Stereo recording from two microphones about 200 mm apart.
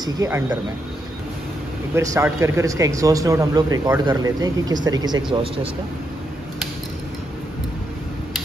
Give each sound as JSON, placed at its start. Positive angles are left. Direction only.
{"t": 0.0, "sound": "speech", "side_deg": -15}
{"t": 2.0, "sound": "speech", "side_deg": -15}